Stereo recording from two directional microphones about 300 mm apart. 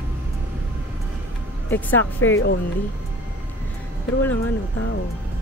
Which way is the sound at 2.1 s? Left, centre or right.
Left.